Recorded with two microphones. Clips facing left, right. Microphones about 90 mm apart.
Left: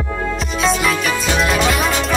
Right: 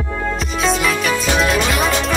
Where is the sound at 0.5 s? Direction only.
Centre (ahead or behind).